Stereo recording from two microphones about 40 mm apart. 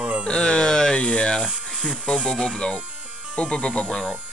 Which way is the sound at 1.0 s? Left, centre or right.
Left.